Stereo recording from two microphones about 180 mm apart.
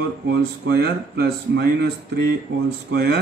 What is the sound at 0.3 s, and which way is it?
Speech, 65° right (ahead or behind).